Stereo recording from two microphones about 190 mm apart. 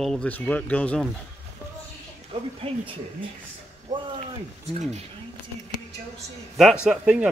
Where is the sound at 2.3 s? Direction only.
30° right (ahead or behind).